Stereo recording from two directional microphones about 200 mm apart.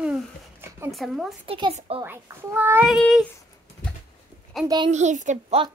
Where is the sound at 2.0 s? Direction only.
10° right (ahead or behind).